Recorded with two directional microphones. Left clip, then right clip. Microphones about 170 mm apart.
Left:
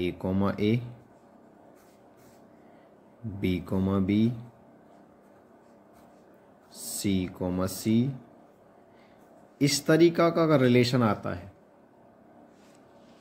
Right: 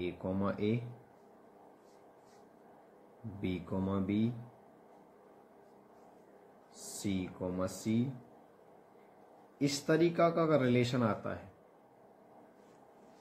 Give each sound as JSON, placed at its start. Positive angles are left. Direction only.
{"t": 0.0, "sound": "speech", "side_deg": 35}
{"t": 3.3, "sound": "speech", "side_deg": 35}
{"t": 7.0, "sound": "speech", "side_deg": 30}
{"t": 9.6, "sound": "speech", "side_deg": 35}